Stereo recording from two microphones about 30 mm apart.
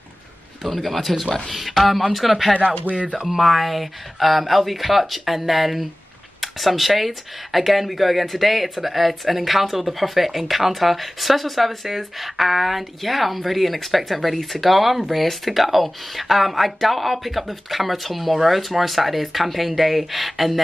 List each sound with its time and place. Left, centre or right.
0.7 s speech: centre
2.9 s speech: right
3.3 s speech: centre